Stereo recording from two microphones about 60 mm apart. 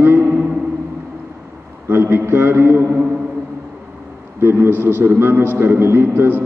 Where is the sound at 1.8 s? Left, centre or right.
Right.